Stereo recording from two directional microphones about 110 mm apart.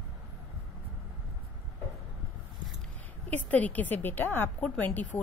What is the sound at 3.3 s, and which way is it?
A woman's voice, 15° left (ahead or behind).